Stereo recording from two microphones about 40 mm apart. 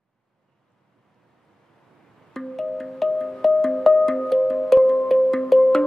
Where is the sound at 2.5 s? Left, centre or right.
Centre.